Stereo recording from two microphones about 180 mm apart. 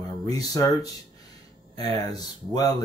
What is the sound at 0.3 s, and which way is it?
Speech, 20° left (ahead or behind).